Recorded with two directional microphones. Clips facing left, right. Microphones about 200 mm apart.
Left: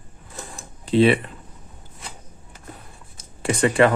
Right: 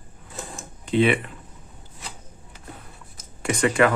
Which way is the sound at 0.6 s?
35° left (ahead or behind).